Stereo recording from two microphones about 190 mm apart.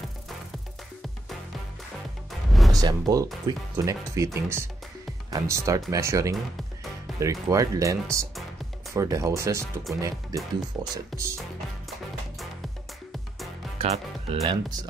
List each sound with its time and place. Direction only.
2.7 s speech: 20° right (ahead or behind)
13.7 s speech: 30° right (ahead or behind)